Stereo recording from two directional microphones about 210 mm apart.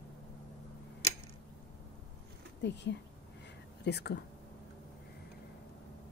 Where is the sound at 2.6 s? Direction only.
55° left (ahead or behind).